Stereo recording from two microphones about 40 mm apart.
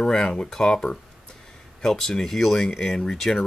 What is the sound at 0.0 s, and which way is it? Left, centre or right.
Speech, centre.